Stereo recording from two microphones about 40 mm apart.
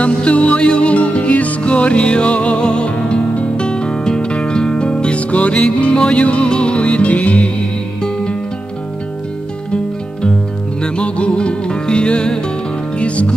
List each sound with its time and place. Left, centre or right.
0.0 s music: left
8.0 s music: left
10.8 s music: left